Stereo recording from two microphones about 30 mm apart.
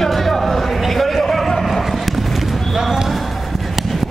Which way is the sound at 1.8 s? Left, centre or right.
Centre.